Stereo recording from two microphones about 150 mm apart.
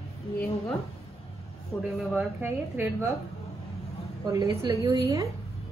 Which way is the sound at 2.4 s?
15° right (ahead or behind).